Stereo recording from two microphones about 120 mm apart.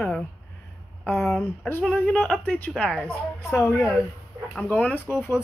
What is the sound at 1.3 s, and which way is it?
Speech, 15° left (ahead or behind).